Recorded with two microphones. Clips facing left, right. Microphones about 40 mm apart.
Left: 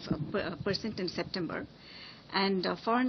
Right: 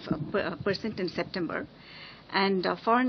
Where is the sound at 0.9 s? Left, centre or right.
Centre.